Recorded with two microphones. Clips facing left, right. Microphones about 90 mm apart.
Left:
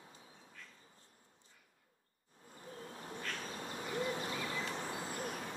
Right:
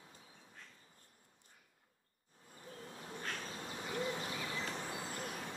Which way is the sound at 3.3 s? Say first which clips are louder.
Left 2 dB; 40° left (ahead or behind).